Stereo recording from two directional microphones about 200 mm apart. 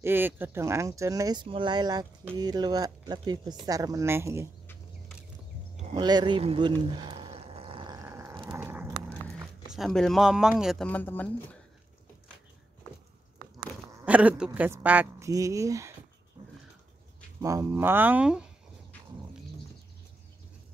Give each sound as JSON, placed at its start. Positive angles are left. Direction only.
{"t": 0.0, "sound": "speech", "side_deg": -10}
{"t": 5.9, "sound": "speech", "side_deg": -20}
{"t": 6.9, "sound": "a sound", "side_deg": -25}
{"t": 9.4, "sound": "speech", "side_deg": 0}
{"t": 14.0, "sound": "speech", "side_deg": -5}
{"t": 17.4, "sound": "speech", "side_deg": -15}